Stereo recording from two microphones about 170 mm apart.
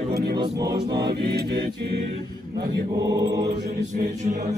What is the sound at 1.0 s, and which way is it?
Mantra, 70° right (ahead or behind).